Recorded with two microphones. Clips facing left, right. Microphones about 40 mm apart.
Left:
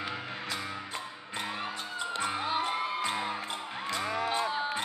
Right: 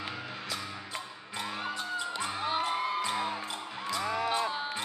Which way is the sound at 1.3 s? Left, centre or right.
Left.